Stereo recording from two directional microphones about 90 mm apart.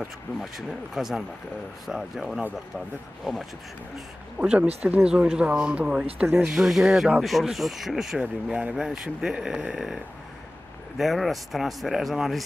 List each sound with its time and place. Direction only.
0.4 s speech: 5° right (ahead or behind)
4.4 s speech: 15° right (ahead or behind)
6.2 s speech: 25° right (ahead or behind)
6.5 s speech: 5° right (ahead or behind)
11.0 s speech: centre (ahead or behind)